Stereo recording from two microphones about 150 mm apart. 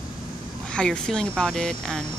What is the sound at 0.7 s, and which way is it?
Speech, 5° left (ahead or behind).